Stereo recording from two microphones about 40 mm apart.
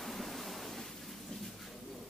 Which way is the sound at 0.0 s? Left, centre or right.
Centre.